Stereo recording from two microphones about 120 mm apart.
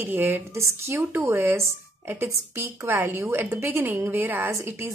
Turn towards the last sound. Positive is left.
turn(degrees=-20)  # may be behind; listen again after turning